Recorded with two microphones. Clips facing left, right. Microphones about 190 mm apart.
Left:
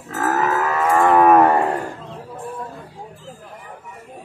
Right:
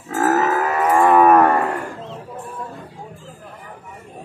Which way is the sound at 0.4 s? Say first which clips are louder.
Right 1 dB; 25° right (ahead or behind).